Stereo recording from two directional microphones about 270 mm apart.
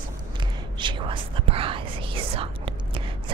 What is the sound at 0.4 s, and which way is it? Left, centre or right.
Whispering, centre.